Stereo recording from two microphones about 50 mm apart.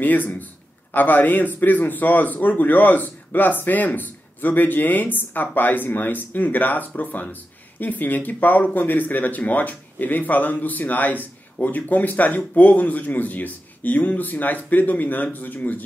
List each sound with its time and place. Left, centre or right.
0.0 s speech: left